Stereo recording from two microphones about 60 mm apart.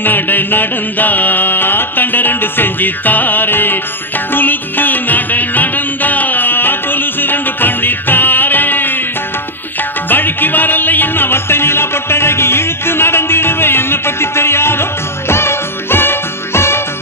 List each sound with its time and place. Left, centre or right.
0.0 s music: left
10.0 s music: left